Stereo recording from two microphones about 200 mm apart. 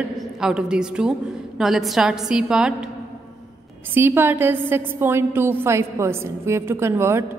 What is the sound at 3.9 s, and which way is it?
A woman's voice, 10° right (ahead or behind).